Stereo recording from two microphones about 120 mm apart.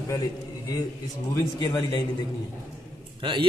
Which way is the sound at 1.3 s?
25° left (ahead or behind).